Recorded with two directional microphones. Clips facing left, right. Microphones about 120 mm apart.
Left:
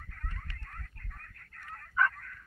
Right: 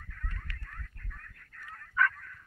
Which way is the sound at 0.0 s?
45° left (ahead or behind).